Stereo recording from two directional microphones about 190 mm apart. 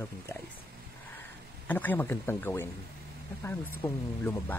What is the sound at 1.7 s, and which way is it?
Speech, 10° left (ahead or behind).